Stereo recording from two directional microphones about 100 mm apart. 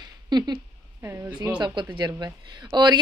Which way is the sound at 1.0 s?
25° right (ahead or behind).